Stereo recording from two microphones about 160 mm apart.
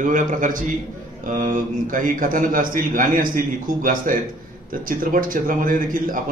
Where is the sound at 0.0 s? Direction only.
55° right (ahead or behind).